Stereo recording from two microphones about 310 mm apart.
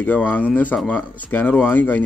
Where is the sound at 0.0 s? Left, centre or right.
Centre.